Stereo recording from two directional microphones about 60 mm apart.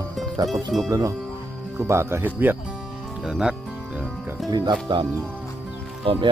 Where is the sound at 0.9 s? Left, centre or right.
Right.